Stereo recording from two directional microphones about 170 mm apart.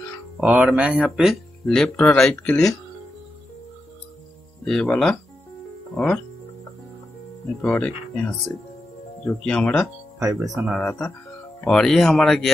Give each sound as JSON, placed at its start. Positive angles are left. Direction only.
{"t": 0.4, "sound": "speech", "side_deg": -10}
{"t": 4.6, "sound": "speech", "side_deg": 0}
{"t": 7.6, "sound": "speech", "side_deg": 5}
{"t": 10.1, "sound": "speech", "side_deg": -20}
{"t": 10.8, "sound": "speech", "side_deg": 10}